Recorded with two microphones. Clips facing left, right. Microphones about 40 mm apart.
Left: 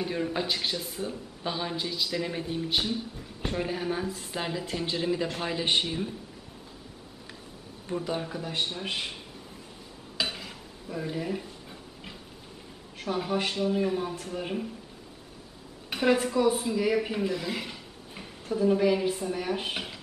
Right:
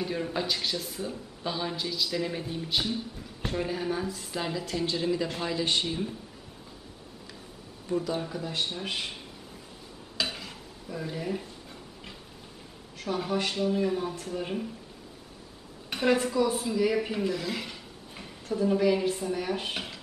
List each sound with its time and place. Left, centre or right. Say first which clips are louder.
0.0 s a man's voice: left 1 dB; centre; by 5.9 s left
8.2 s a man's voice: even; centre
10.1 s dishes: left 1 dB; centre
13.0 s a man's voice: even; centre
15.9 s a woman's voice: left 1 dB; centre